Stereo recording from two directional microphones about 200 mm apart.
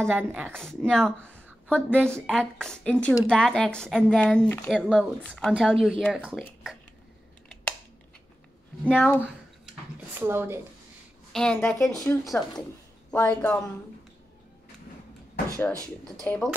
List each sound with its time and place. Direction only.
0.1 s speech: 10° right (ahead or behind)
0.5 s speech: 5° left (ahead or behind)
8.8 s speech: 5° left (ahead or behind)
9.9 s speech: 10° right (ahead or behind)
11.3 s speech: 5° left (ahead or behind)
11.9 s speech: 15° left (ahead or behind)
16.2 s speech: 5° left (ahead or behind)